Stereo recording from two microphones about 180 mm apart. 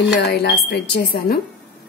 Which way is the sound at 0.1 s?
60° left (ahead or behind).